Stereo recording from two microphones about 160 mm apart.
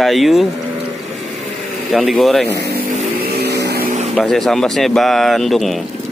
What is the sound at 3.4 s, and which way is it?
Vehicle, 90° right.